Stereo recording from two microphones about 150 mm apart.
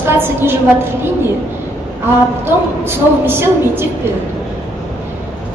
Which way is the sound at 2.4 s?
15° right (ahead or behind).